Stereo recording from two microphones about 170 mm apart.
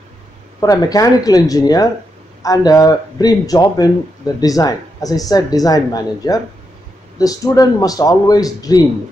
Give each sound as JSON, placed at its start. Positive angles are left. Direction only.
{"t": 0.6, "sound": "speech", "side_deg": 20}